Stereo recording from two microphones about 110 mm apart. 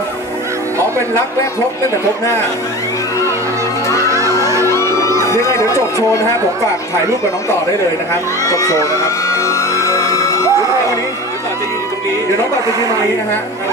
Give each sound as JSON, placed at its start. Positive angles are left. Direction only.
{"t": 4.1, "sound": "music", "side_deg": -25}
{"t": 4.6, "sound": "music", "side_deg": 25}
{"t": 5.1, "sound": "a sound", "side_deg": -25}
{"t": 8.5, "sound": "speech", "side_deg": 30}
{"t": 9.4, "sound": "music", "side_deg": 30}